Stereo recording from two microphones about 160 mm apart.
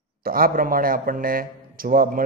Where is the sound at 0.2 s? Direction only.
65° right (ahead or behind).